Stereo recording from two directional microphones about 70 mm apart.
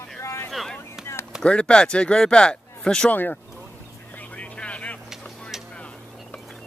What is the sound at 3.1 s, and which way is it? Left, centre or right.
Speech, left.